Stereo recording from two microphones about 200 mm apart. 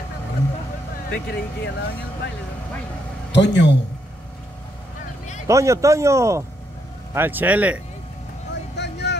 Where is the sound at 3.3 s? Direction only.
60° left (ahead or behind).